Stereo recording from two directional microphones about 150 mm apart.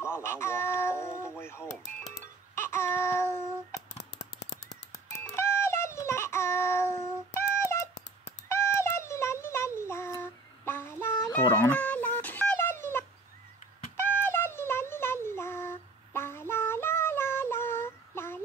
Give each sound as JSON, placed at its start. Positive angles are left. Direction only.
{"t": 0.0, "sound": "a sound", "side_deg": 15}
{"t": 4.6, "sound": "music", "side_deg": 15}
{"t": 8.5, "sound": "child singing", "side_deg": 15}
{"t": 13.9, "sound": "music", "side_deg": 15}